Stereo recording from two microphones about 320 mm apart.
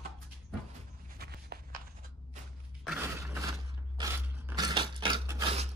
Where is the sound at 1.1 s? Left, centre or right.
Right.